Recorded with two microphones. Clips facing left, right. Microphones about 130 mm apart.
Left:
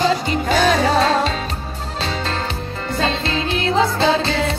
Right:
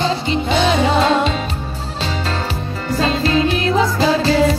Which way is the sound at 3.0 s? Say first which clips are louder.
Right 5 dB; 30° left (ahead or behind).